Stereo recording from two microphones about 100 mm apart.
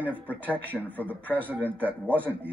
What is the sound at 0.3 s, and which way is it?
Speech, 20° right (ahead or behind).